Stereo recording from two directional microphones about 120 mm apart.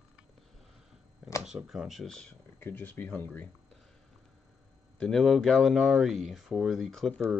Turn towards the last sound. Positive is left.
turn(degrees=5)  # may be behind; listen again after turning